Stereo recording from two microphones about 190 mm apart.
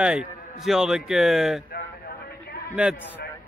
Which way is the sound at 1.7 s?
55° left (ahead or behind).